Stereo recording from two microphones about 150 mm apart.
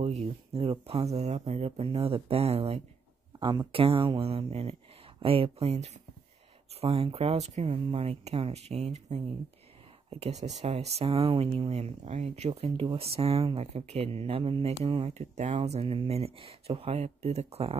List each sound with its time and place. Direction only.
0.2 s speech: 40° right (ahead or behind)
3.3 s speech: 30° right (ahead or behind)